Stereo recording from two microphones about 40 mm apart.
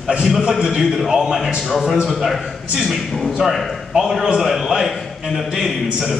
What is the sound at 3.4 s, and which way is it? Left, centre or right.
A man's voice, centre.